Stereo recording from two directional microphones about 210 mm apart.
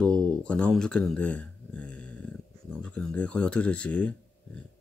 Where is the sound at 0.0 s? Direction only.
5° left (ahead or behind).